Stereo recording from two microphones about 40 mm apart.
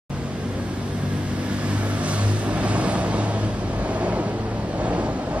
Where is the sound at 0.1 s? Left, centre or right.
Right.